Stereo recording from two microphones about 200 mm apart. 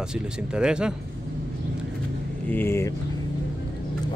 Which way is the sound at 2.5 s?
10° left (ahead or behind).